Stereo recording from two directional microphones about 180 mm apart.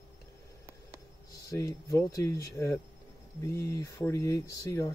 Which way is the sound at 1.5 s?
20° left (ahead or behind).